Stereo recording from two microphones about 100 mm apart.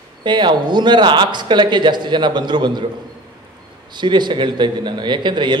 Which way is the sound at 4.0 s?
50° right (ahead or behind).